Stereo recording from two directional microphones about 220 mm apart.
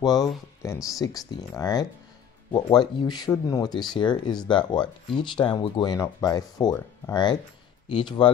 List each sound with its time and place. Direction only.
0.0 s speech: 15° left (ahead or behind)